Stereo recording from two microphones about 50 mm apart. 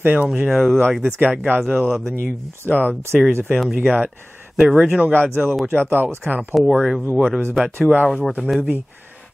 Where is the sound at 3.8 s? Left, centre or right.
Right.